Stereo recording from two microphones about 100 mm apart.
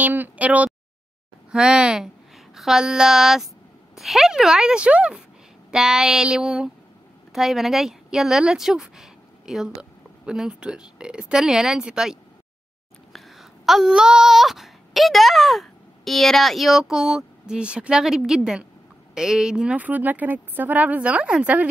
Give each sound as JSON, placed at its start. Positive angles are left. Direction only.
{"t": 0.0, "sound": "a woman's voice", "side_deg": -20}
{"t": 13.1, "sound": "a sound", "side_deg": 0}
{"t": 19.1, "sound": "a woman's voice", "side_deg": -5}